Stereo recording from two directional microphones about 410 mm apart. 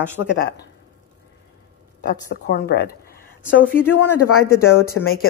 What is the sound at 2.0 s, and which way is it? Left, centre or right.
Speech, left.